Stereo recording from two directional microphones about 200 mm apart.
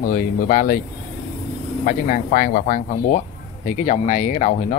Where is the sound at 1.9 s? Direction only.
45° left (ahead or behind).